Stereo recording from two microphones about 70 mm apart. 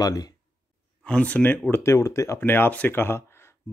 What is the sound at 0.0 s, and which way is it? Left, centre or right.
Speech, left.